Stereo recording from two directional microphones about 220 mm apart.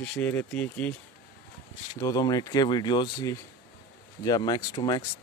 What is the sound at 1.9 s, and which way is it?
Speech, 15° left (ahead or behind).